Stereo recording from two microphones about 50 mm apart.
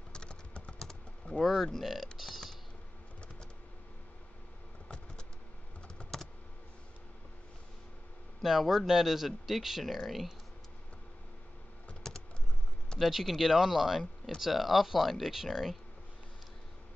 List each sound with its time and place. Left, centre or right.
0.1 s typing: centre
1.4 s speech: centre
2.1 s typing: centre
4.8 s a sound: left
8.4 s speech: centre
12.1 s typing: centre
13.0 s speech: centre